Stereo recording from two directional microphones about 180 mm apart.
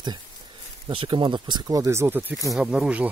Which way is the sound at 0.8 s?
30° right (ahead or behind).